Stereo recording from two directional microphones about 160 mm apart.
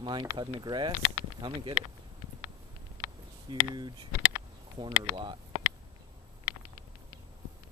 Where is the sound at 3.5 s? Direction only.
30° right (ahead or behind).